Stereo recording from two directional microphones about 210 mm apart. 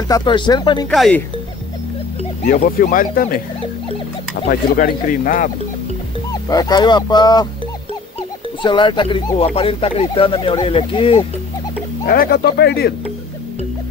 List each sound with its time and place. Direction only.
0.1 s speech: 20° left (ahead or behind)
0.8 s speech: 5° left (ahead or behind)
2.4 s speech: 40° left (ahead or behind)
4.5 s speech: 40° left (ahead or behind)
6.5 s speech: 20° left (ahead or behind)
12.1 s speech: 45° left (ahead or behind)